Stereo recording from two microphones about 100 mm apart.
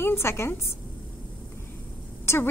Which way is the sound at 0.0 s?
25° left (ahead or behind).